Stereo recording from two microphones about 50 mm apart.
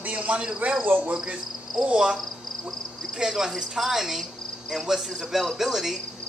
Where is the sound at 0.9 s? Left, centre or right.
Right.